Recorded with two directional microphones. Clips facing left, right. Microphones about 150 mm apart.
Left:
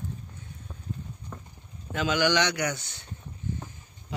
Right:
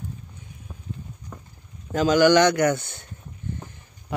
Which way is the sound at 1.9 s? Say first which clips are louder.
Right 8 dB; 40° right (ahead or behind).